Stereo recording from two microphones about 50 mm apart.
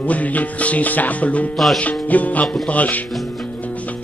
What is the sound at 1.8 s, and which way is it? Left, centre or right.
Music, left.